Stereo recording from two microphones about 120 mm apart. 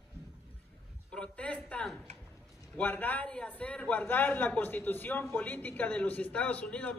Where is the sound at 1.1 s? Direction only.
10° left (ahead or behind).